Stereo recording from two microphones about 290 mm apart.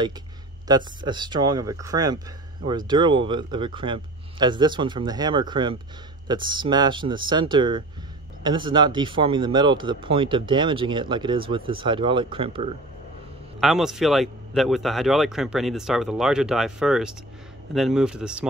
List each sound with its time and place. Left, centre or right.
0.7 s speech: centre
13.6 s speech: centre